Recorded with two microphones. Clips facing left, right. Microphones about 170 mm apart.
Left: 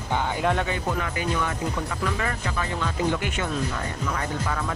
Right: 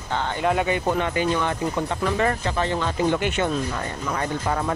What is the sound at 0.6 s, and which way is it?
Speech, 25° right (ahead or behind).